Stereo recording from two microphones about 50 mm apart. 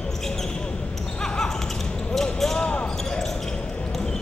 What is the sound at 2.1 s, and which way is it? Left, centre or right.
Basketball bounce, centre.